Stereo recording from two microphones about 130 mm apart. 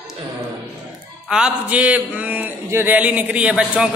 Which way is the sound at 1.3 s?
10° right (ahead or behind).